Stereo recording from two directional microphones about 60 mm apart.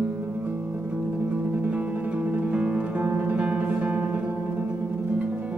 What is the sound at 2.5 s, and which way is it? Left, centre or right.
Music, right.